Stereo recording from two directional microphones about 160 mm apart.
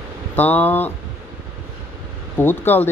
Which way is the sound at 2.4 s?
10° left (ahead or behind).